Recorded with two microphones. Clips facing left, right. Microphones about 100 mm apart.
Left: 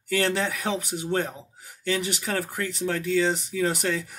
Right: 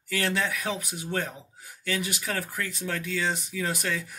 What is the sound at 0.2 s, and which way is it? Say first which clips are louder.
Speech: left 1 dB; 35° left (ahead or behind).